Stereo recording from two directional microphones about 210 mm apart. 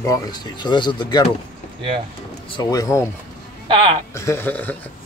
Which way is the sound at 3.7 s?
25° right (ahead or behind).